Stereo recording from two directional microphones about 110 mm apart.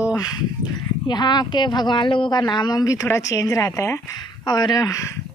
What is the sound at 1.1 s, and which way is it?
Speech, 40° left (ahead or behind).